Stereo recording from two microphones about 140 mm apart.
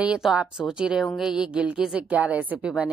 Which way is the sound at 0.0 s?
5° right (ahead or behind).